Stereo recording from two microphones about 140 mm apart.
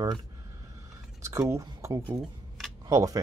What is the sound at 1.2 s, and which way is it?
Speech, 20° right (ahead or behind).